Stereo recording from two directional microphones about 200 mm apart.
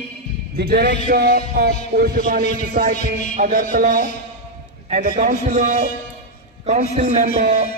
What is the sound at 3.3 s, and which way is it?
Speech, 45° right (ahead or behind).